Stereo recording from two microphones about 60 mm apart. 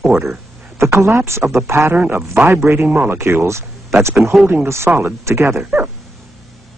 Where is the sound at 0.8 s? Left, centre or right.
Right.